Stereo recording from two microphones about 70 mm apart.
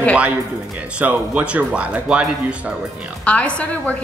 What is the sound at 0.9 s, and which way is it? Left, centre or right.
Speech, centre.